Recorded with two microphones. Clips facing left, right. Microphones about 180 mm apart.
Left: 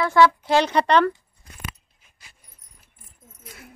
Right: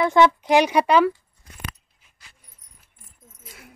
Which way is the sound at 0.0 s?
20° right (ahead or behind).